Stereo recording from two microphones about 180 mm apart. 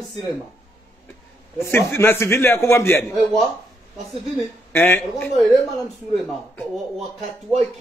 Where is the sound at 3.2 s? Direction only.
Centre (ahead or behind).